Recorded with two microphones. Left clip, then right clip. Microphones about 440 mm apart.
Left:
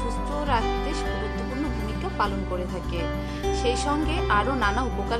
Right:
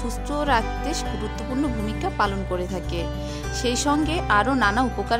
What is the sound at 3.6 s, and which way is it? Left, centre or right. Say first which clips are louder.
Speech: right 5 dB; right.